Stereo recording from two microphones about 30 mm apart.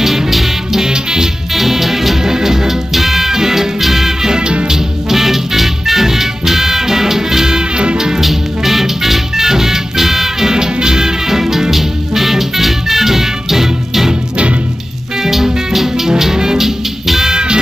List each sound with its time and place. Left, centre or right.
0.0 s music: centre
0.8 s music: right
1.5 s music: centre
4.3 s music: right
4.6 s music: centre
7.7 s music: right
8.2 s music: centre
10.5 s music: right
11.7 s music: centre
15.2 s music: centre
16.6 s music: centre
17.3 s music: right